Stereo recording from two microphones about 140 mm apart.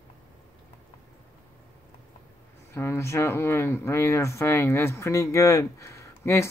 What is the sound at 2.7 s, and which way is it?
Speech, 20° left (ahead or behind).